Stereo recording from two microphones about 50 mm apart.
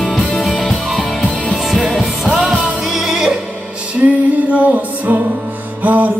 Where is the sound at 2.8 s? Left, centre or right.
Centre.